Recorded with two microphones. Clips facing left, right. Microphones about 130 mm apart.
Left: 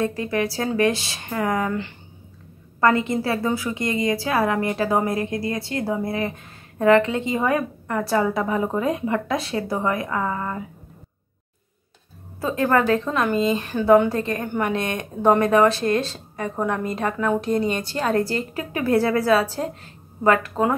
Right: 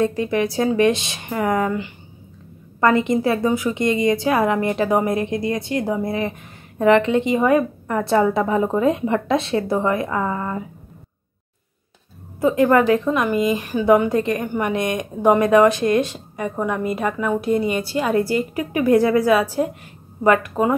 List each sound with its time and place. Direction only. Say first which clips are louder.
0.0 s a woman's voice: right 4 dB; 20° right (ahead or behind)
2.8 s a woman's voice: right 3 dB; 20° right (ahead or behind)
12.4 s a woman's voice: right 5 dB; 15° right (ahead or behind)